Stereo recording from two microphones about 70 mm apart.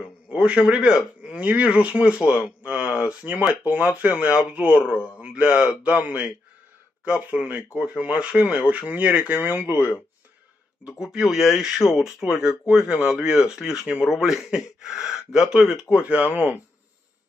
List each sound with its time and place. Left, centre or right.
0.0 s a man's voice: centre
4.9 s a man's voice: left
5.2 s speech: centre
11.0 s speech: centre
15.9 s speech: centre